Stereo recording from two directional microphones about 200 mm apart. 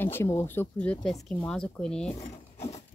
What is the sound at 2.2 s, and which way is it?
Wood, 35° left (ahead or behind).